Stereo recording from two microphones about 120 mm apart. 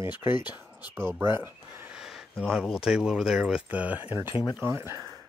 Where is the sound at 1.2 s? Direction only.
20° right (ahead or behind).